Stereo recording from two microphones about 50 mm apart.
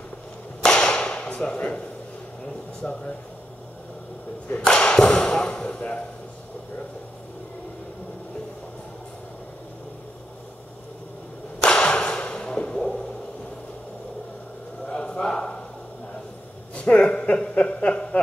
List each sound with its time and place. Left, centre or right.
0.6 s whip: centre
2.8 s speech: left
4.6 s speech: centre
11.6 s whip: centre
14.9 s a sound: centre
16.7 s a sound: left